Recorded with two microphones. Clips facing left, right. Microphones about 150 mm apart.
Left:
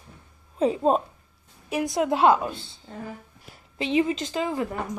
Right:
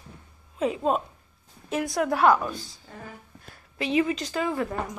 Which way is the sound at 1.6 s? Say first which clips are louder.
Left 2 dB; 15° left (ahead or behind).